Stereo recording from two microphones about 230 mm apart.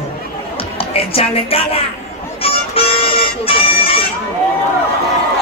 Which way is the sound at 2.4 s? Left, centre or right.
Left.